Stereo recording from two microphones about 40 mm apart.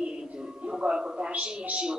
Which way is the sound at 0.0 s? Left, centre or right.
Right.